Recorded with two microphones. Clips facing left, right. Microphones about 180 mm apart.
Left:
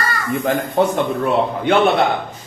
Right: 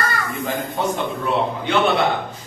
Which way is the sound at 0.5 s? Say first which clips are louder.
Left 7 dB; 55° left (ahead or behind).